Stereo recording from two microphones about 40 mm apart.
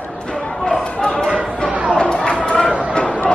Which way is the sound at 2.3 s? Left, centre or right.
Left.